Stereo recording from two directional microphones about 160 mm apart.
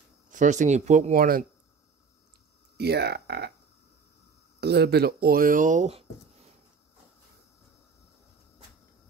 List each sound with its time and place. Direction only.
0.3 s speech: 50° right (ahead or behind)
2.8 s speech: 90° right
4.6 s speech: 90° right; by 6.0 s 45° right (ahead or behind)